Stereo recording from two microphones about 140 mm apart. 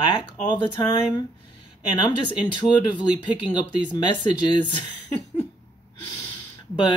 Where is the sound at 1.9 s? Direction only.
35° left (ahead or behind).